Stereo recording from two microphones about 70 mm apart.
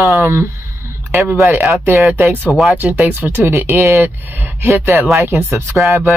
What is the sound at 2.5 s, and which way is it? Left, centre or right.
Speech, centre.